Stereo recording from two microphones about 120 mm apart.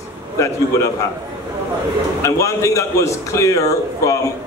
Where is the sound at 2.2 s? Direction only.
25° left (ahead or behind).